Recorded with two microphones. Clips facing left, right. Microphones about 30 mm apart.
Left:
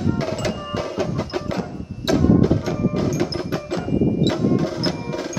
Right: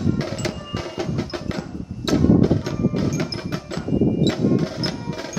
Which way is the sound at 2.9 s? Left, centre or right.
Centre.